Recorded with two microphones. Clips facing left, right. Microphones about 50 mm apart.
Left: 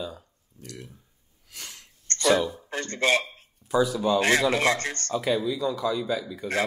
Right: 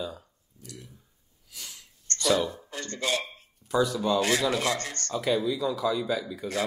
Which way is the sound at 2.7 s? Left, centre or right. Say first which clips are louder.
Left 9 dB; left.